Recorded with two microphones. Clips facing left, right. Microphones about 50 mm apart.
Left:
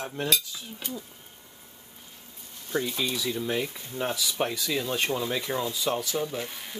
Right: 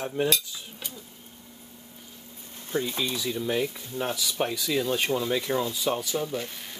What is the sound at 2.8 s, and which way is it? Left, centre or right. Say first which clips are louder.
Speech: even; right.